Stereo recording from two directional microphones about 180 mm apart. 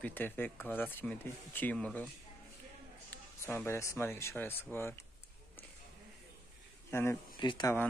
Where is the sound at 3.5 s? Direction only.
15° left (ahead or behind).